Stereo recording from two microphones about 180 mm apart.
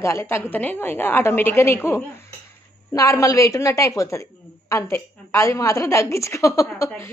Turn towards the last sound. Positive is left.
turn(degrees=15)  # may be behind; listen again after turning